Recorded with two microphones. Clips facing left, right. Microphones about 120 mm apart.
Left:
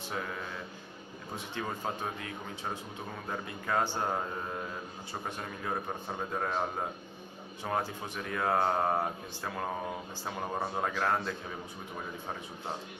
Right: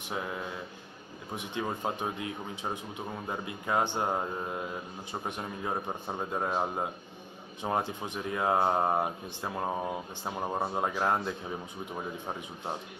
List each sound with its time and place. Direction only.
1.3 s a man's voice: 20° right (ahead or behind)